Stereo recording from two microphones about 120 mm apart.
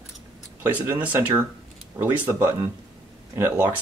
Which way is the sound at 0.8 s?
15° right (ahead or behind).